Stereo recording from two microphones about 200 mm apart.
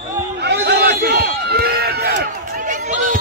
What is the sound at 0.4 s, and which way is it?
Run, 55° right (ahead or behind).